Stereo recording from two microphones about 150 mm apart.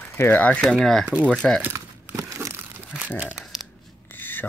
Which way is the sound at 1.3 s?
5° left (ahead or behind).